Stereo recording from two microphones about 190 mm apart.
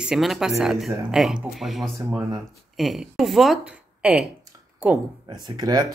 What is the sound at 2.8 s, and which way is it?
Speech, centre (ahead or behind).